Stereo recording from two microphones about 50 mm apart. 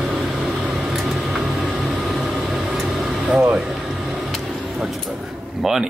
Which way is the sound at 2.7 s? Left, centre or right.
Centre.